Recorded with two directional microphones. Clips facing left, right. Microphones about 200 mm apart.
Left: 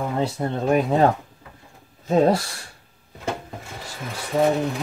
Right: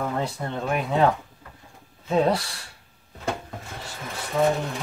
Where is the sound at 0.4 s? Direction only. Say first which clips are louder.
Left 6 dB; 35° left (ahead or behind).